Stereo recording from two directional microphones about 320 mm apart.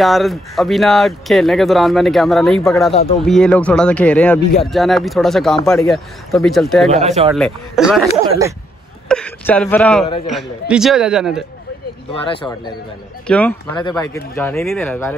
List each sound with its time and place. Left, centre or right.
0.0 s speech: centre
6.9 s speech: centre
7.3 s speech: centre
9.1 s speech: centre
10.0 s a man's voice: centre
10.3 s speech: centre
12.2 s speech: centre